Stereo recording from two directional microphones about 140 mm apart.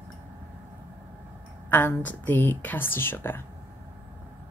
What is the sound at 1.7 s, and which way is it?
A woman's voice, 15° left (ahead or behind).